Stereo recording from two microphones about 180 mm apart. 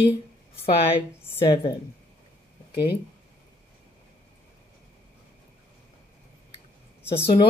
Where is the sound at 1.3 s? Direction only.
30° left (ahead or behind).